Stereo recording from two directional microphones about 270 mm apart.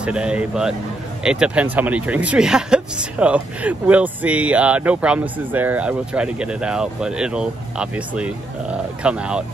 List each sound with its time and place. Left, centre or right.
0.0 s speech: centre